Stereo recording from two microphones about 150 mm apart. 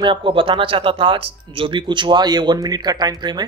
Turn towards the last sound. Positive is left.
turn(degrees=-25)  # may be behind; listen again after turning